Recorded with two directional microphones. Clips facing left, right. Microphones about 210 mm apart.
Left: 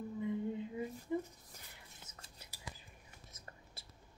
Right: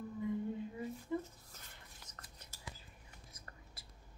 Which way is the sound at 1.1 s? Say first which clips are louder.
Left 2 dB; 15° left (ahead or behind).